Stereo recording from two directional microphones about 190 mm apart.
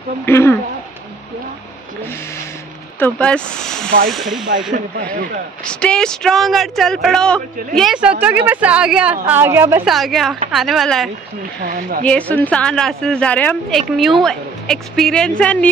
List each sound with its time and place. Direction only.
0.2 s speech: 15° left (ahead or behind)
3.0 s speech: 5° left (ahead or behind)
5.1 s speech: 45° right (ahead or behind)
5.6 s a woman's voice: 5° left (ahead or behind); by 9.8 s 10° right (ahead or behind)
9.8 s speech: centre (ahead or behind)
11.6 s speech: 45° right (ahead or behind)
12.0 s speech: 5° left (ahead or behind)